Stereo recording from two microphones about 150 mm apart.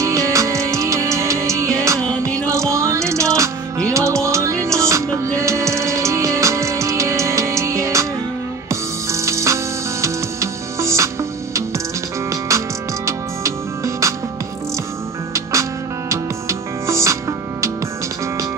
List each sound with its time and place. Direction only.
0.0 s music: 20° right (ahead or behind)
12.3 s music: 20° right (ahead or behind)
16.1 s music: 20° right (ahead or behind)